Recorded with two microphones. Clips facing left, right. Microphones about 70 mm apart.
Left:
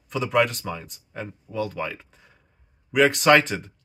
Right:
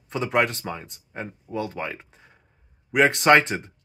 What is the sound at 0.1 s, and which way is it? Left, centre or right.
Speech, right.